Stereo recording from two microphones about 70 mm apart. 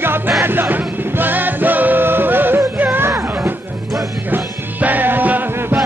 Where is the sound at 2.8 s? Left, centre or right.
Right.